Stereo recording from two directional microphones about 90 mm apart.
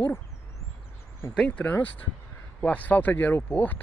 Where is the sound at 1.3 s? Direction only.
10° left (ahead or behind).